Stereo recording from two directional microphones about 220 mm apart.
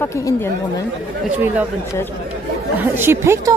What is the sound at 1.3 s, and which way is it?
Speech, 5° right (ahead or behind).